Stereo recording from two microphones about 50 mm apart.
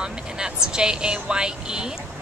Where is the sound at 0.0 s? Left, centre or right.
Centre.